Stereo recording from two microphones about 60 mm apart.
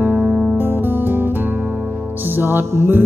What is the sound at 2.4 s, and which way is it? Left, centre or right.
Music, right.